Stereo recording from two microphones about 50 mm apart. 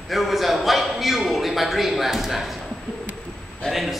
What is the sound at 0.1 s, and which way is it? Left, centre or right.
A man's voice, centre.